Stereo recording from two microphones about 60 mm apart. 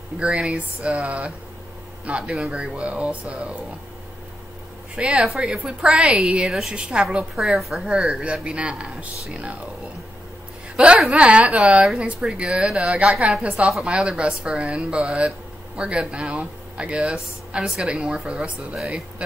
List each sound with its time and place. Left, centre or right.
0.2 s speech: centre
4.9 s speech: centre
7.3 s speech: centre; by 9.6 s right
11.1 s speech: right